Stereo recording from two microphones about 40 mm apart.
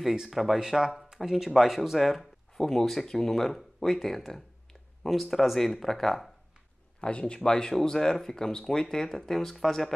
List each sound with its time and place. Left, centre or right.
0.3 s speech: centre
0.6 s speech: centre
7.0 s speech: left
7.3 s speech: centre